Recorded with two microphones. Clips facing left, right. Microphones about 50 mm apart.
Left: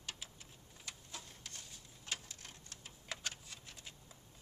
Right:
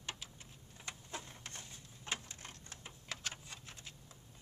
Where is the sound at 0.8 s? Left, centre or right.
Right.